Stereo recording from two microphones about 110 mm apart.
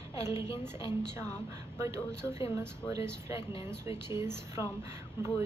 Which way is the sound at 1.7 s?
25° right (ahead or behind).